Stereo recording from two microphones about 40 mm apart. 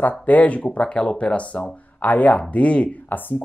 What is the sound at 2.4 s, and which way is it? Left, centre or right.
Speech, left.